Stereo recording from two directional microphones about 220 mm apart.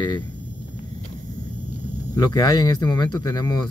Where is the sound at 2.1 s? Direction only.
15° left (ahead or behind).